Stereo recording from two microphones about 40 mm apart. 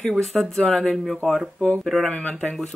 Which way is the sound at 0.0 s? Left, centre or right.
Centre.